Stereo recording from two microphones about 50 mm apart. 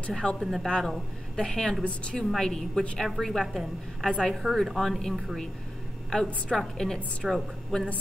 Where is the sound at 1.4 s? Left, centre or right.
Centre.